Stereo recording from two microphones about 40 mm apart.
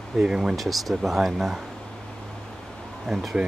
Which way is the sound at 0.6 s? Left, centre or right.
Centre.